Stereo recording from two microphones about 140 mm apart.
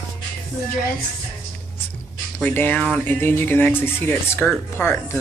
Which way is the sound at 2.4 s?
15° left (ahead or behind).